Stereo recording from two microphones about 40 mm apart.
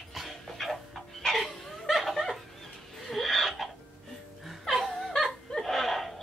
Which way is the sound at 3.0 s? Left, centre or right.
Centre.